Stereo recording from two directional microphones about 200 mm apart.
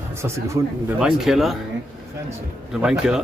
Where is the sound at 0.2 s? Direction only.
10° right (ahead or behind).